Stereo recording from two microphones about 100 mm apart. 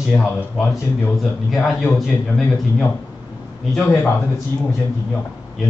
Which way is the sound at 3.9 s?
25° left (ahead or behind).